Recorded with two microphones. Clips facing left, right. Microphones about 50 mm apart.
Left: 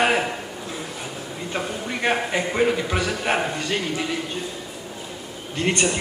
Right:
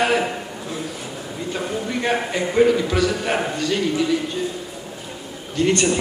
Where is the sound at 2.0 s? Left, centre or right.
Centre.